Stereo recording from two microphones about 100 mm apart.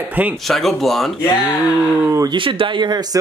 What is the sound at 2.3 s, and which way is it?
Speech, 55° right (ahead or behind).